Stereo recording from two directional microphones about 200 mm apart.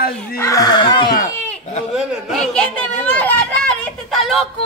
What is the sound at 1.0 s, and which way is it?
Speech, 45° left (ahead or behind).